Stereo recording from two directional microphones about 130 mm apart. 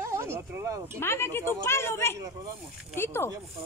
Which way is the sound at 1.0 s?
20° left (ahead or behind).